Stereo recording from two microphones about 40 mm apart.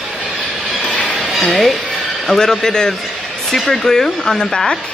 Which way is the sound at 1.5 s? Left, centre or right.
Centre.